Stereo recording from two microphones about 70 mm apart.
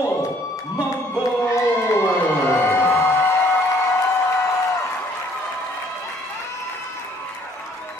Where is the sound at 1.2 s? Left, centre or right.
Left.